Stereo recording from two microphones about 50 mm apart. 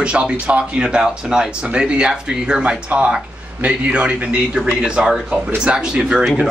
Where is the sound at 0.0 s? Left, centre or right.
Right.